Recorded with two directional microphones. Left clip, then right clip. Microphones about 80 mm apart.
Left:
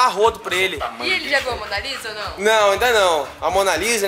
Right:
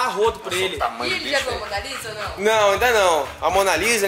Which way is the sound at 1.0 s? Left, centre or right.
Centre.